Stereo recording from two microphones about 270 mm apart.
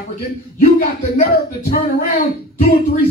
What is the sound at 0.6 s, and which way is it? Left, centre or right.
A man's voice, left.